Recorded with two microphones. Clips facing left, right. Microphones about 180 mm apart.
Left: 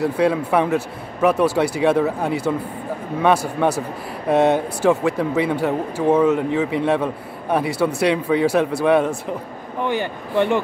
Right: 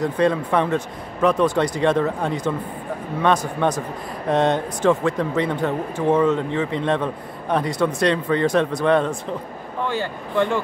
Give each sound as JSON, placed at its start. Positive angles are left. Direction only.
{"t": 0.0, "sound": "a man's voice", "side_deg": 10}